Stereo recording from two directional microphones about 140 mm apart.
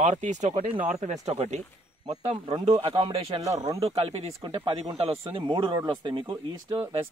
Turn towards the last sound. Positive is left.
turn(degrees=-35)  # may be behind; listen again after turning